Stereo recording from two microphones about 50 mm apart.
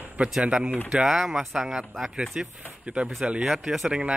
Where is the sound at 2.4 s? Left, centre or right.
Centre.